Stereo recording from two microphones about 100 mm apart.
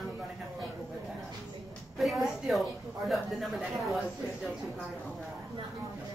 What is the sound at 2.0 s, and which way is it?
A woman's voice, centre (ahead or behind).